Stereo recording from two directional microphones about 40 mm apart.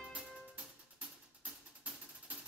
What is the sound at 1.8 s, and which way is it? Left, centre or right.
Music, right.